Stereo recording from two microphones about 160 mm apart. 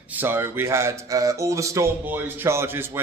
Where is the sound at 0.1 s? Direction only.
15° right (ahead or behind).